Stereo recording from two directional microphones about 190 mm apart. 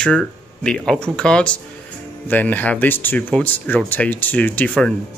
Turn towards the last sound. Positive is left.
turn(degrees=5)  # may be behind; listen again after turning